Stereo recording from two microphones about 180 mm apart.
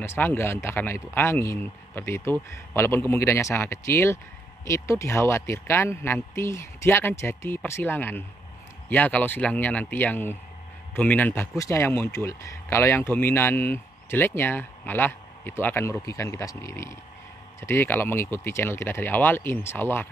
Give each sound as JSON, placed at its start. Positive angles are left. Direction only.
{"t": 0.0, "sound": "speech", "side_deg": 10}